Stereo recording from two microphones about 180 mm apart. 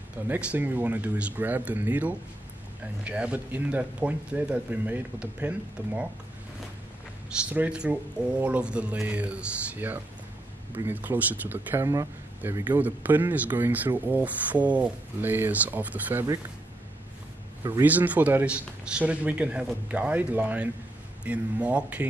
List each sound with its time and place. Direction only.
0.3 s speech: 10° right (ahead or behind)
7.5 s speech: 5° right (ahead or behind)
17.8 s speech: 10° right (ahead or behind)